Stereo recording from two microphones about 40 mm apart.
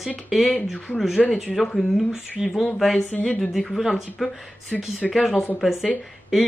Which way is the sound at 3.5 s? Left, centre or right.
Centre.